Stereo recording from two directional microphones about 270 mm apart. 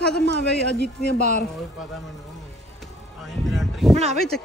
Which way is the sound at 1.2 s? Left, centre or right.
Left.